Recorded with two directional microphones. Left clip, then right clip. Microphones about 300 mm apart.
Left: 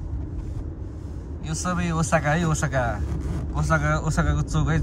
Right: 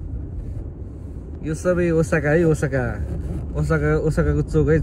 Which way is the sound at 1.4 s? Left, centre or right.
Centre.